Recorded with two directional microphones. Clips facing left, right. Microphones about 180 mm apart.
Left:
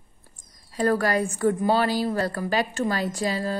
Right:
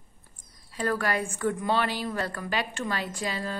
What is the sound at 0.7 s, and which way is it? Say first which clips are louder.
A woman's voice: left 6 dB; 40° left (ahead or behind).